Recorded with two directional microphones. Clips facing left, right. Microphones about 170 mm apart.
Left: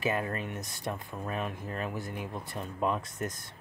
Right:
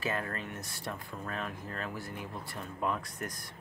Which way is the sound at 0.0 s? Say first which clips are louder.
Left 4 dB; 15° left (ahead or behind).